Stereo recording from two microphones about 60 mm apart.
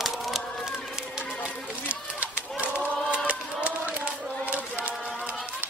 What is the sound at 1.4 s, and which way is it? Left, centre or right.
Run, right.